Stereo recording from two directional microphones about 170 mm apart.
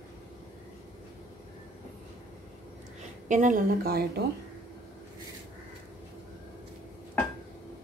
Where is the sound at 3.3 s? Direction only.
50° right (ahead or behind); by 4.2 s 65° right (ahead or behind).